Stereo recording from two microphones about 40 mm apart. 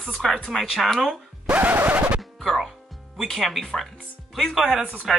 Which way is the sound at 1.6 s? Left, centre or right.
Right.